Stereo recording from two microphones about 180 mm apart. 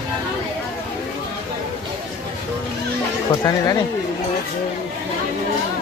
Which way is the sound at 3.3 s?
20° left (ahead or behind).